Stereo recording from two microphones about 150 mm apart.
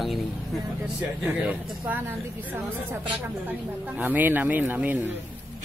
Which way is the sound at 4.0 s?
10° right (ahead or behind).